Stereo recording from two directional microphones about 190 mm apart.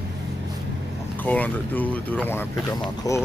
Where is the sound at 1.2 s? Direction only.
10° left (ahead or behind).